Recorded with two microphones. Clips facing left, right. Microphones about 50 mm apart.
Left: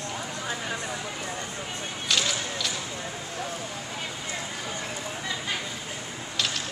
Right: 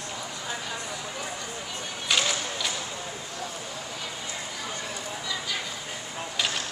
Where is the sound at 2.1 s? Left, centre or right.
Centre.